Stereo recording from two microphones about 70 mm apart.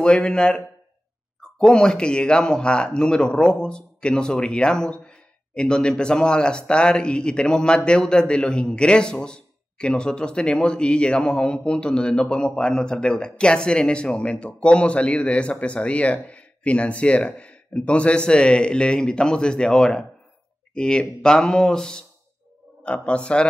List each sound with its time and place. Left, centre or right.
0.0 s speech: centre
1.6 s speech: centre